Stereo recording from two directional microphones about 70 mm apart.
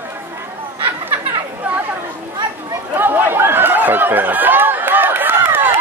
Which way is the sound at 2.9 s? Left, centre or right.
Right.